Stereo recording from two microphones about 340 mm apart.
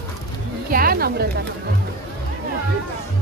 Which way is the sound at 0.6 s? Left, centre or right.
Right.